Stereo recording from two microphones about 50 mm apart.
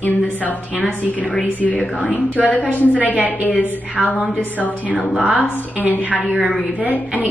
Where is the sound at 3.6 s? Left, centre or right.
Left.